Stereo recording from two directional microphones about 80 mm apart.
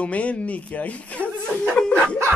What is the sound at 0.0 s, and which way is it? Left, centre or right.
Speech, centre.